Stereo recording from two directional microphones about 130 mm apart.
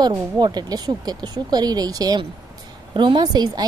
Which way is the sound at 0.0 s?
35° right (ahead or behind).